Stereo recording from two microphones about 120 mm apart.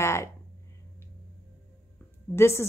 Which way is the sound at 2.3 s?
20° left (ahead or behind).